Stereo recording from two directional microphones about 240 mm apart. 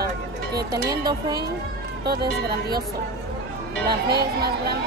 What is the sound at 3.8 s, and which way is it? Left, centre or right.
Speech, right.